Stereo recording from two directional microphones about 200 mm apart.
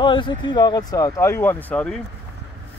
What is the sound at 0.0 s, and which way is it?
Speech, 25° left (ahead or behind).